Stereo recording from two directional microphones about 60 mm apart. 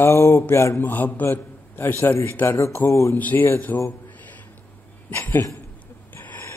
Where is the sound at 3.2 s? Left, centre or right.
Left.